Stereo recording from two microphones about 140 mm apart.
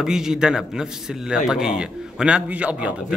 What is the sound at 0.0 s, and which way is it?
Speech, 5° right (ahead or behind).